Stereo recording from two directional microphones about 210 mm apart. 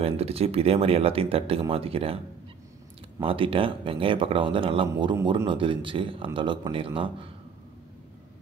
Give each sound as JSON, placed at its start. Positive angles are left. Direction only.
{"t": 0.0, "sound": "speech", "side_deg": -30}
{"t": 3.3, "sound": "speech", "side_deg": -25}